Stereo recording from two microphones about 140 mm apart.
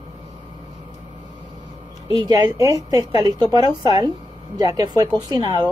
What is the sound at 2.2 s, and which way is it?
A woman's voice, 30° right (ahead or behind).